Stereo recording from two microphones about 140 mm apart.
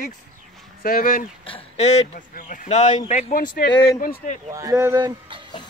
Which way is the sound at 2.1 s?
70° left (ahead or behind).